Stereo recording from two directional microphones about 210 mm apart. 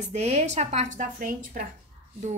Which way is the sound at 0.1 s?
30° right (ahead or behind).